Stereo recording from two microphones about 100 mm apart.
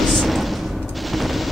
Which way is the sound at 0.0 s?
Centre (ahead or behind).